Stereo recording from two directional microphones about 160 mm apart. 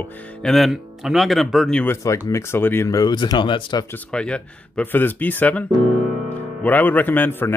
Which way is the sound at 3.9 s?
5° left (ahead or behind).